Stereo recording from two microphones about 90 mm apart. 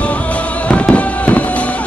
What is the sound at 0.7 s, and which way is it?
Fireworks, 15° left (ahead or behind).